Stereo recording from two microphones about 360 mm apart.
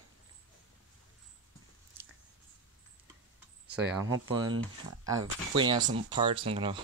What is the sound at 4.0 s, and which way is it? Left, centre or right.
Speech, right.